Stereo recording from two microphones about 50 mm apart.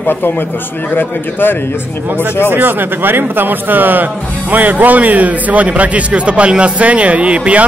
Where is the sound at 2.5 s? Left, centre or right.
Right.